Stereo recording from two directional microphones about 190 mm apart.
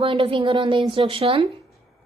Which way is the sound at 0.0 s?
25° right (ahead or behind).